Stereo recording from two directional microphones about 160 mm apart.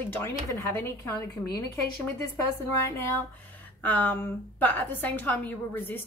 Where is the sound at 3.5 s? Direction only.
10° left (ahead or behind).